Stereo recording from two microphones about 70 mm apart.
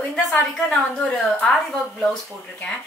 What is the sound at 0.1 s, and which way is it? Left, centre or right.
A woman's voice, centre.